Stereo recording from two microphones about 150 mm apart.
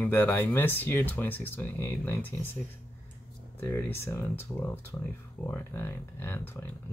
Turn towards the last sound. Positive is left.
turn(degrees=15)  # may be behind; listen again after turning